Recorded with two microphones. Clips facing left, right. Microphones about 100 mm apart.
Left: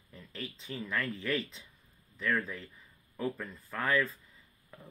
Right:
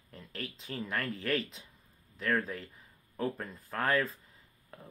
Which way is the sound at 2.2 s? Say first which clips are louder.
Right 1 dB; 35° right (ahead or behind).